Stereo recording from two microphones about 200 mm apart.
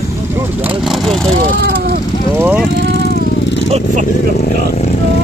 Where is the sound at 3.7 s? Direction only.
35° right (ahead or behind).